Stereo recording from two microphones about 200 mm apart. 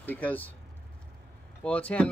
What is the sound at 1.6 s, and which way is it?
Speech, 5° left (ahead or behind).